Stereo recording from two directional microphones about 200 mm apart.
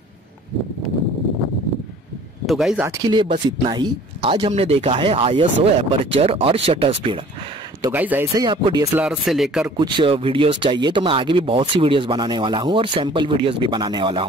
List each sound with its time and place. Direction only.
2.4 s speech: centre (ahead or behind)
2.8 s speech: 20° right (ahead or behind)
7.9 s speech: 10° right (ahead or behind)
8.4 s speech: 20° right (ahead or behind)
8.9 s speech: 5° right (ahead or behind)
9.8 s speech: 25° right (ahead or behind)